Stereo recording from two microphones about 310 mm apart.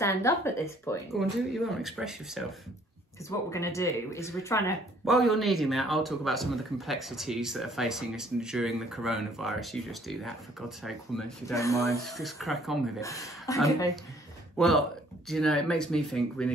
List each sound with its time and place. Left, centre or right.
0.0 s speech: centre
3.3 s speech: centre
13.0 s speech: centre